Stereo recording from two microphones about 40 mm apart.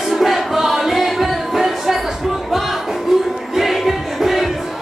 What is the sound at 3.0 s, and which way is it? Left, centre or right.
Music, centre.